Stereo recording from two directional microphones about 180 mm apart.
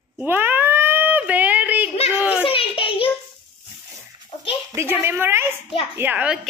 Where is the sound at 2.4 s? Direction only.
30° left (ahead or behind).